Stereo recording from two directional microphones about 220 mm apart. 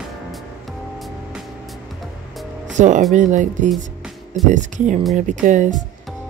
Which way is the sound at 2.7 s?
35° right (ahead or behind).